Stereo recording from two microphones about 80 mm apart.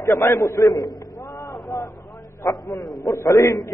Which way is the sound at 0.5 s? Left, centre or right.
Left.